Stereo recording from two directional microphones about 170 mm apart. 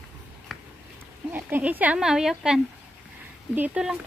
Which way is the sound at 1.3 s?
10° right (ahead or behind).